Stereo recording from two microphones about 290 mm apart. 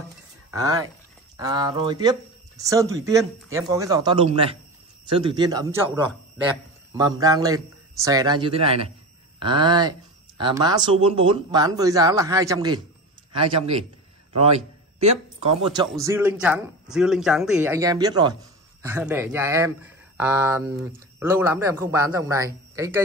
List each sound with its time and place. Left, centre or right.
0.5 s a man's voice: centre
15.0 s a man's voice: right